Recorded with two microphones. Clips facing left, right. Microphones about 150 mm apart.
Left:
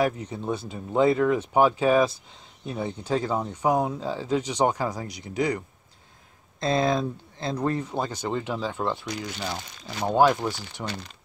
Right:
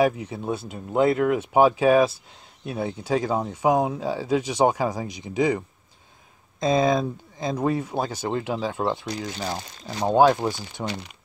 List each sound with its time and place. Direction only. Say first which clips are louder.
0.0 s speech: right 3 dB; 10° right (ahead or behind)
6.6 s speech: right 3 dB; 10° right (ahead or behind)
9.0 s speech: right 2 dB; 35° right (ahead or behind)